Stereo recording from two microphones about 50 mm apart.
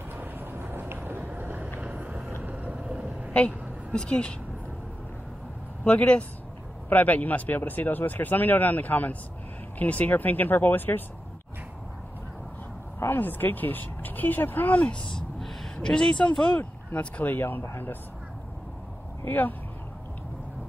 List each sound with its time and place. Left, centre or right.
0.1 s vehicle: right; by 3.3 s centre
3.3 s speech: centre
5.9 s speech: left
13.2 s speech: left
15.7 s speech: centre
16.5 s speech: left
17.3 s speech: left
19.2 s speech: left